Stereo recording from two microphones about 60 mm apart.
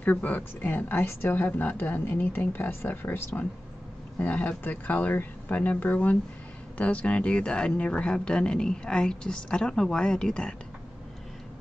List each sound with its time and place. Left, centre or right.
0.0 s speech: left
1.3 s speech: left
4.2 s speech: left